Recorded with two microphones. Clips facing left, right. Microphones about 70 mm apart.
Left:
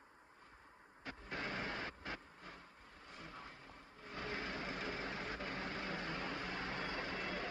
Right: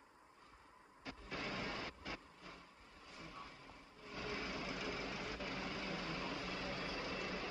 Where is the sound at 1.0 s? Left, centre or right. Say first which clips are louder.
Left 2 dB; left.